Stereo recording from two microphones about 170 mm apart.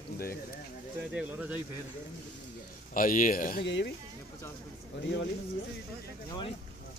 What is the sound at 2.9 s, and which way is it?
Speech, 50° left (ahead or behind).